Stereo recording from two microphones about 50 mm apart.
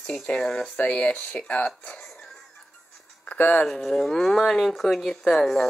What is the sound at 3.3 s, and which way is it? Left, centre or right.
Speech, left.